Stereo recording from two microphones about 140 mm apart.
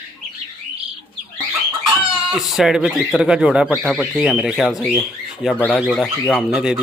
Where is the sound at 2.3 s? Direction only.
Centre (ahead or behind).